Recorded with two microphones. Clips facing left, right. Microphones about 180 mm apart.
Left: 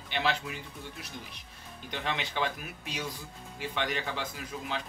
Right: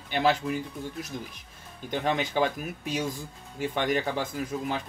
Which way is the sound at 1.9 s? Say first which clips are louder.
Right 7 dB; 45° right (ahead or behind).